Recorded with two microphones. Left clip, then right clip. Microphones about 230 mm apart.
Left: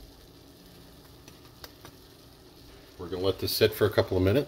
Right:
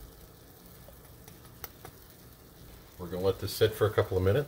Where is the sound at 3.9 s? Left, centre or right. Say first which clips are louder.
Left 2 dB; left.